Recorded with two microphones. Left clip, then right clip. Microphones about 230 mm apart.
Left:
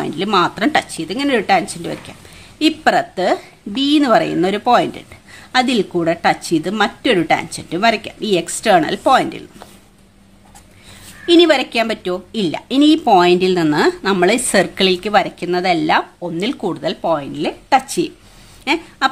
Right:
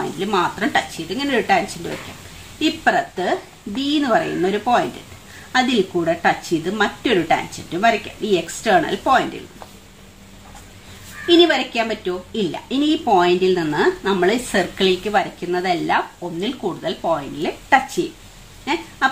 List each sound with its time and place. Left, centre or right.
0.2 s speech: left
2.6 s speech: left
11.2 s speech: left